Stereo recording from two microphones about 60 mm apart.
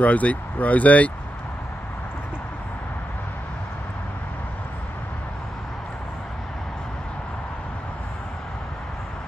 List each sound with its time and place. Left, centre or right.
0.0 s speech: left